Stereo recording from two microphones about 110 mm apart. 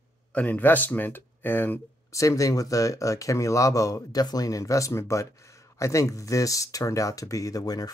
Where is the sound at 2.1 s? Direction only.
30° left (ahead or behind).